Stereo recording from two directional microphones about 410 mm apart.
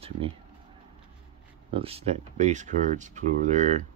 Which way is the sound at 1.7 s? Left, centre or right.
Centre.